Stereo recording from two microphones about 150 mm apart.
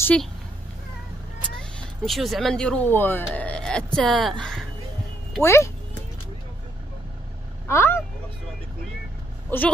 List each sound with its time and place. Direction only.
0.0 s speech: 5° left (ahead or behind)
1.6 s speech: centre (ahead or behind)
5.4 s speech: 20° left (ahead or behind)
7.6 s speech: 15° left (ahead or behind)
9.5 s speech: 10° left (ahead or behind)